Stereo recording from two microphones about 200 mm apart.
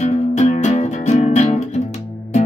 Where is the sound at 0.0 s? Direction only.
35° left (ahead or behind).